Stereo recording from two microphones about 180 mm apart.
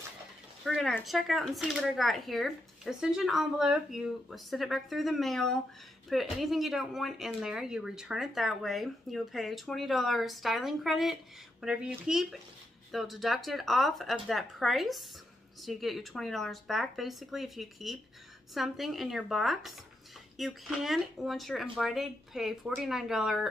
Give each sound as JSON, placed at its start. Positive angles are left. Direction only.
{"t": 0.7, "sound": "speech", "side_deg": 0}